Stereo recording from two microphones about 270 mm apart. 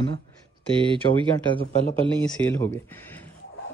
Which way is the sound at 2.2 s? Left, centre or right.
Centre.